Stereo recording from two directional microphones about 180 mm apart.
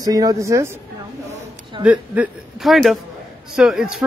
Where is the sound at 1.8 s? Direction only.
10° right (ahead or behind).